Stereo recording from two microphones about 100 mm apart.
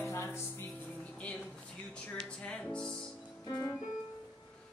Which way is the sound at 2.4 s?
10° left (ahead or behind).